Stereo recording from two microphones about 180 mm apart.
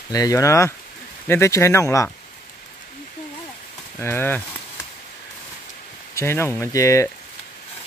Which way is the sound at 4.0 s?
10° left (ahead or behind).